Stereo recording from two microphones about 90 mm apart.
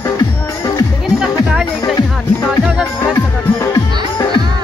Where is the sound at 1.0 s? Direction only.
5° right (ahead or behind).